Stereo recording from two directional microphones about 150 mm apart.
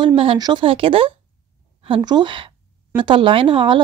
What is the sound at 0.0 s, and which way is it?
Speech, 35° right (ahead or behind).